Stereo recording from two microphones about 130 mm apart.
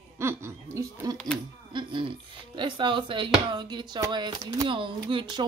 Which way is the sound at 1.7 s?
40° right (ahead or behind).